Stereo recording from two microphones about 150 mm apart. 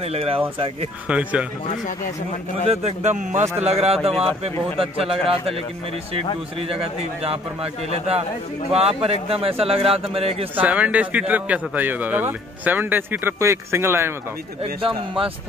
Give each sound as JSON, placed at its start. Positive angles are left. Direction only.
{"t": 0.1, "sound": "a man's voice", "side_deg": -40}
{"t": 1.0, "sound": "a man's voice", "side_deg": -10}
{"t": 2.7, "sound": "a man's voice", "side_deg": -50}
{"t": 6.7, "sound": "a man's voice", "side_deg": -40}
{"t": 10.5, "sound": "a man's voice", "side_deg": -10}
{"t": 14.6, "sound": "a man's voice", "side_deg": -35}